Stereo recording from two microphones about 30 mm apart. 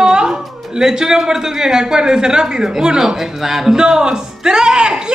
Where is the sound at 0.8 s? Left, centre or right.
Right.